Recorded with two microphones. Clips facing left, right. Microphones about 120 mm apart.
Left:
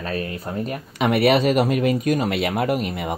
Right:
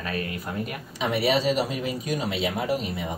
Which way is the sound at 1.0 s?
60° left (ahead or behind).